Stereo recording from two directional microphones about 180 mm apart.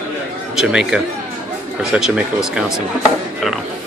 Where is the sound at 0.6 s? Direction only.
5° right (ahead or behind).